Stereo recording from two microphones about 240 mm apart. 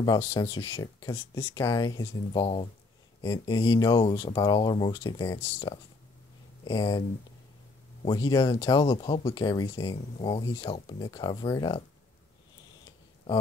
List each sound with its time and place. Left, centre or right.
0.0 s speech: centre
6.6 s speech: centre